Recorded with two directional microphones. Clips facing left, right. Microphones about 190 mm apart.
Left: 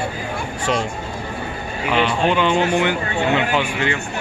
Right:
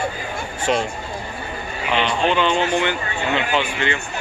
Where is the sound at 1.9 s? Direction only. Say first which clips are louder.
Left 1 dB; 5° left (ahead or behind).